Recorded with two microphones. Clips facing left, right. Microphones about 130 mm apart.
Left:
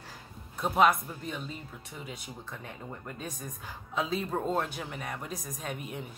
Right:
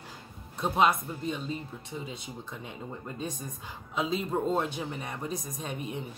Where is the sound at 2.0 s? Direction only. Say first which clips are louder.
Right 2 dB; 20° right (ahead or behind).